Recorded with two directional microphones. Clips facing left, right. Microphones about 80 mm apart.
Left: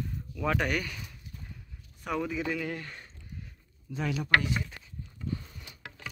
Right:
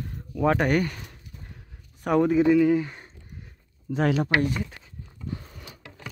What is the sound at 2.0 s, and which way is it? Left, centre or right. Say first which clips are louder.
Speech: right 11 dB; right.